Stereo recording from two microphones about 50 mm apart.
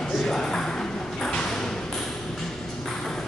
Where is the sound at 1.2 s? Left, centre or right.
Centre.